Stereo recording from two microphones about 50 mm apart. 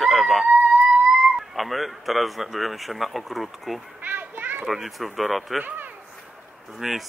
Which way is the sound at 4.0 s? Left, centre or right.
Right.